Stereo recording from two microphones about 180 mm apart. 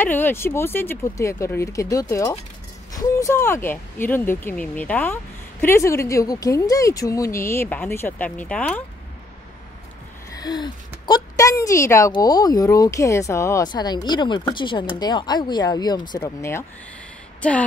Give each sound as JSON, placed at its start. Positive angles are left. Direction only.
{"t": 0.0, "sound": "speech", "side_deg": 10}
{"t": 10.3, "sound": "a woman's voice", "side_deg": 20}